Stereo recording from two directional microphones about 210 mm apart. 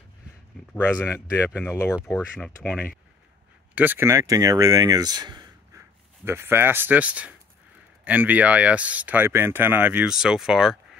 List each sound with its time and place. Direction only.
0.7 s speech: 10° left (ahead or behind)
3.7 s speech: 10° right (ahead or behind)